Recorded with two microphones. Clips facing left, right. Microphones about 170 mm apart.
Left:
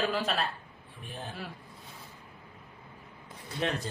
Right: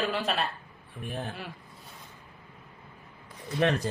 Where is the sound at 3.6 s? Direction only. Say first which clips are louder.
Right 6 dB; 65° right (ahead or behind).